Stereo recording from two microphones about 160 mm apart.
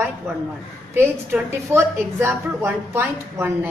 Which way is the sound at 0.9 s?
15° right (ahead or behind).